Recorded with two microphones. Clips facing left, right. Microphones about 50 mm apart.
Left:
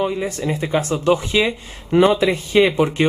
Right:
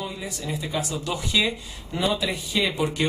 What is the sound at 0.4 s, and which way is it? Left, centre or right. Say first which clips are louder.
Speech: left 6 dB; left.